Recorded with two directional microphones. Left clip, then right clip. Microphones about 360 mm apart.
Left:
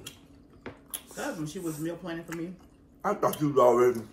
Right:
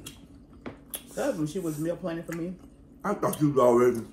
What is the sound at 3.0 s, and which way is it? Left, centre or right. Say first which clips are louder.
Speech: even; centre.